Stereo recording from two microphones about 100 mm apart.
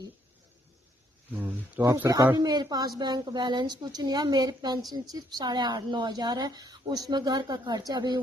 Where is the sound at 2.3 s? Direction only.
45° right (ahead or behind).